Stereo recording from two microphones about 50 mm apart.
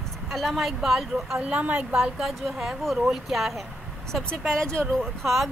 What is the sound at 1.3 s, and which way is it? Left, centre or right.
Speech, centre.